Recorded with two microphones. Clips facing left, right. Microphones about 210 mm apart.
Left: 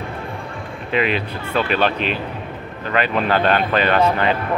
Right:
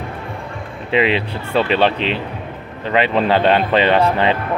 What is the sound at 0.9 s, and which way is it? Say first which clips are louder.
Speech: right 3 dB; 25° right (ahead or behind).